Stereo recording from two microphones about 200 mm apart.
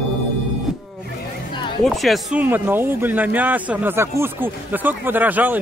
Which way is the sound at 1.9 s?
Centre (ahead or behind).